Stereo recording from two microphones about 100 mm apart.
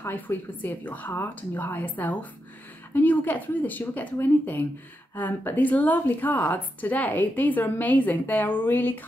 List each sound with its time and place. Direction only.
0.0 s a woman's voice: 20° left (ahead or behind)